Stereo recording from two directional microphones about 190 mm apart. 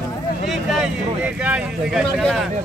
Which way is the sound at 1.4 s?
5° right (ahead or behind).